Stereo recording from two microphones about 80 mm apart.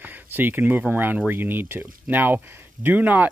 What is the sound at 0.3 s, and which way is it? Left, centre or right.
Speech, right.